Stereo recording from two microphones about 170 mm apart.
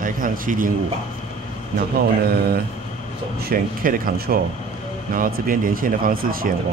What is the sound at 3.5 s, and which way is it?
A man's voice, 55° right (ahead or behind).